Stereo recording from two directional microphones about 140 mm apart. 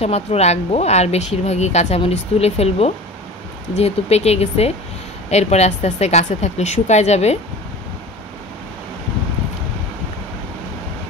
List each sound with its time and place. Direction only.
0.0 s speech: 50° left (ahead or behind)